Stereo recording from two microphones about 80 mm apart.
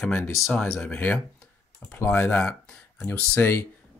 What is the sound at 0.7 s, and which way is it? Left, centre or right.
Speech, left.